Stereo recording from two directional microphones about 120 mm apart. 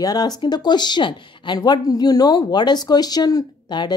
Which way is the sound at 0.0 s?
35° left (ahead or behind).